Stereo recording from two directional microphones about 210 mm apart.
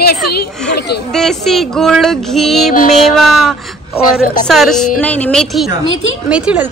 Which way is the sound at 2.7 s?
35° left (ahead or behind).